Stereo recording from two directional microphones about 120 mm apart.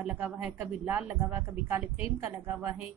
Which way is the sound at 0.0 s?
10° right (ahead or behind).